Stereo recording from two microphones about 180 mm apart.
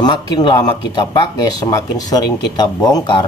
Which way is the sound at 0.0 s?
25° left (ahead or behind).